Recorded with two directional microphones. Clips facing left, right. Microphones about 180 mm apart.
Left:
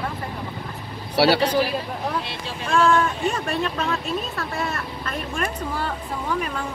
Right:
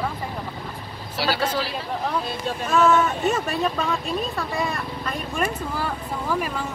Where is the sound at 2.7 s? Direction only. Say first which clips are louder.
Even; 5° right (ahead or behind).